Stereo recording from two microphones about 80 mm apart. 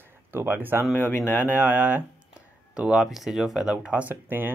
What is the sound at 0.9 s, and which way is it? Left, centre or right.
Speech, left.